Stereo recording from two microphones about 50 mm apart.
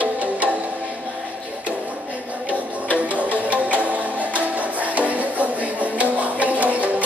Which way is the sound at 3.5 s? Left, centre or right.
Right.